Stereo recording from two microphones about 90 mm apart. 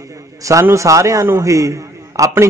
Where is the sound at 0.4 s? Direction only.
35° right (ahead or behind).